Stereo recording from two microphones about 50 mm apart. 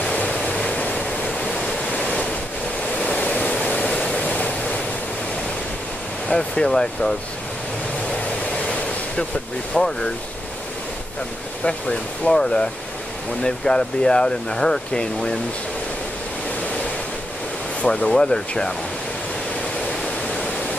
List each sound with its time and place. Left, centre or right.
0.0 s waves: left
0.7 s a sound: left
2.0 s waves: left
3.0 s waterfall: left
6.2 s speech: centre
9.8 s speech: centre
11.6 s speech: centre
17.8 s speech: centre